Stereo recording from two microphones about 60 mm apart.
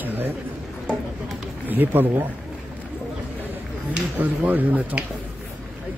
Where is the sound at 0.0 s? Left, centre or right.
Right.